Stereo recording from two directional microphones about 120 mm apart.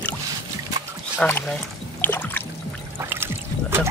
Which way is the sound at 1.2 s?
15° left (ahead or behind).